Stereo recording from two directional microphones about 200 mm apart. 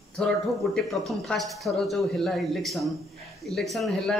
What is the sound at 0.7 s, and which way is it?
Speech, centre (ahead or behind).